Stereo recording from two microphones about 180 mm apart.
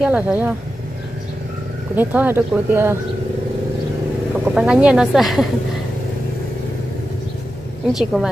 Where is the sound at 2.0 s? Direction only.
10° right (ahead or behind).